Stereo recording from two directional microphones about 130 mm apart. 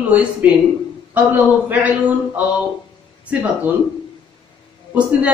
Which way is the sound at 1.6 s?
10° right (ahead or behind).